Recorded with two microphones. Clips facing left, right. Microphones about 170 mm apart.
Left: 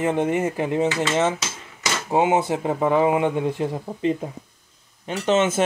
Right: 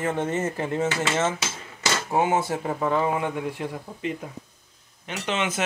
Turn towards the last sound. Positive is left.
turn(degrees=40)  # may be behind; listen again after turning